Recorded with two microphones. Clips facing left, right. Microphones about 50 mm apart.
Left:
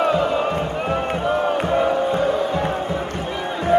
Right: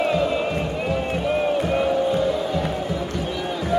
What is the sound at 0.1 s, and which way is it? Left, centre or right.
Crowd, left.